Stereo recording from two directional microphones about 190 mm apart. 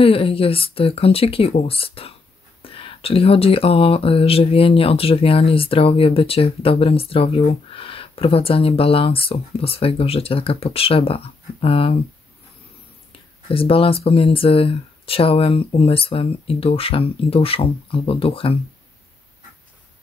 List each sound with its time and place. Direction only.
0.0 s speech: 30° left (ahead or behind)
13.5 s speech: 30° left (ahead or behind)